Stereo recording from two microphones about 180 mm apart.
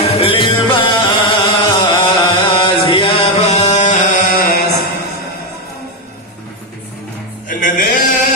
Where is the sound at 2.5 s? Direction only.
25° left (ahead or behind); by 4.8 s 55° left (ahead or behind).